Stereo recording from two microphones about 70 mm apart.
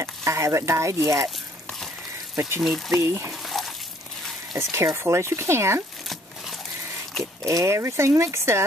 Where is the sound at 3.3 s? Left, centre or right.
Centre.